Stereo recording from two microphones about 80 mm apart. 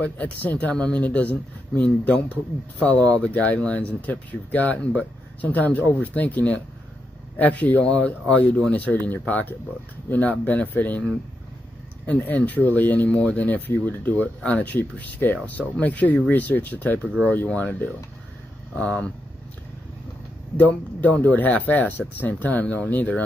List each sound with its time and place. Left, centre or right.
0.0 s speech: centre
12.1 s speech: centre
20.5 s speech: left